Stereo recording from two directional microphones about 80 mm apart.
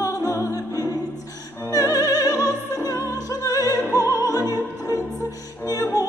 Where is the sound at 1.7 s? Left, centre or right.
Left.